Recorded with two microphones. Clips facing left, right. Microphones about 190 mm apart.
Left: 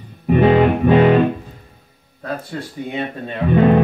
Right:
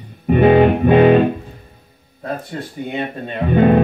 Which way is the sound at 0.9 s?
30° right (ahead or behind).